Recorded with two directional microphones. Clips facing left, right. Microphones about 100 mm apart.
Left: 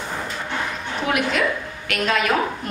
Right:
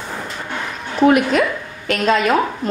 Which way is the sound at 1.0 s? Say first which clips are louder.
Right 8 dB; 40° right (ahead or behind).